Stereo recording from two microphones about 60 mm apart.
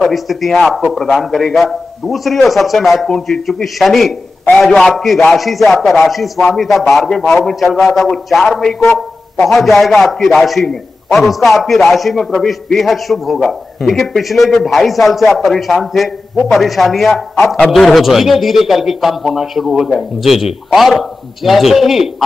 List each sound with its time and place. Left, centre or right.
0.0 s a man's voice: centre